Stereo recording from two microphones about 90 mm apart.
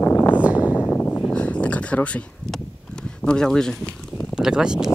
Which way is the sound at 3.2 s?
5° left (ahead or behind).